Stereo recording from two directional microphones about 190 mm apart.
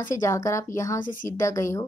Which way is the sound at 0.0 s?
15° left (ahead or behind).